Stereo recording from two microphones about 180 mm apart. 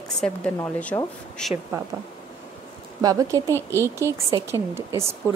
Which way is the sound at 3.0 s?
20° right (ahead or behind).